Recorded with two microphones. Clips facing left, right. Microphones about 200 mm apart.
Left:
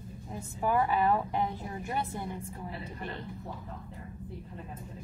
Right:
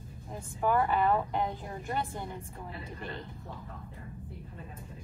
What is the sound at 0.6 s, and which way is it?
Speech, 10° left (ahead or behind).